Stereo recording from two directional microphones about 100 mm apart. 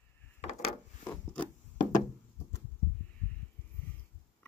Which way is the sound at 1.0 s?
10° left (ahead or behind).